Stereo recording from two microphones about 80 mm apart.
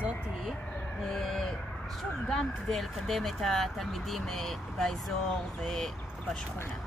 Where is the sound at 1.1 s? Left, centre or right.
Centre.